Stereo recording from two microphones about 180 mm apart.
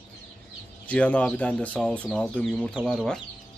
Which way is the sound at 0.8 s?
10° left (ahead or behind).